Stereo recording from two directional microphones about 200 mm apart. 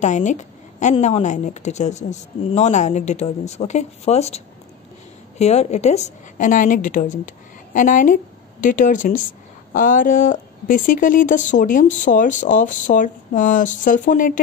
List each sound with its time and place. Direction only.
0.0 s speech: 35° left (ahead or behind)
5.4 s a woman's voice: 35° left (ahead or behind)